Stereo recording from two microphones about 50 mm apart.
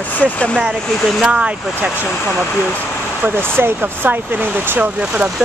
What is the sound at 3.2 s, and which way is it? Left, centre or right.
Speech, right.